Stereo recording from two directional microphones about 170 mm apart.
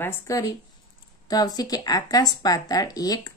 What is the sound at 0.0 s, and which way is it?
A woman's voice, 15° left (ahead or behind).